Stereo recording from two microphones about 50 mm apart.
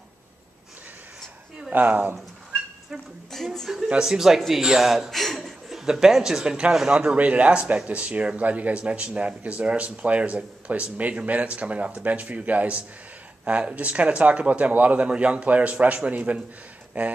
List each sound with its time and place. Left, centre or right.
1.7 s speech: right
3.3 s a woman's voice: centre; by 17.1 s right